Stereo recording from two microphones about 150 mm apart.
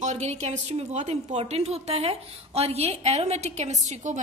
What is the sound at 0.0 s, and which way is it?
A woman's voice, 50° right (ahead or behind).